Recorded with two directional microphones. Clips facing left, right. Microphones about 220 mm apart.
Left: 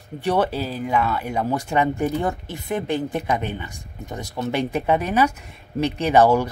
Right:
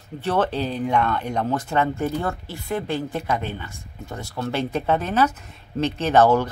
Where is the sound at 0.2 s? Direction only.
10° left (ahead or behind).